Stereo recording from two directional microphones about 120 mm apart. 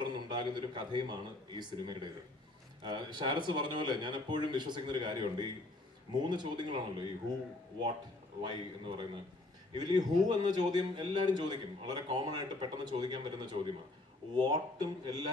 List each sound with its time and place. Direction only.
0.0 s a man's voice: 40° right (ahead or behind)
8.4 s a man's voice: 45° right (ahead or behind)